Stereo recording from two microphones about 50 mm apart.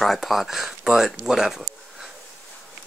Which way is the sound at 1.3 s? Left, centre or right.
Centre.